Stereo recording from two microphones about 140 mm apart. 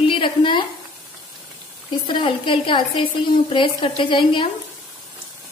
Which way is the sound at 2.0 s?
35° left (ahead or behind).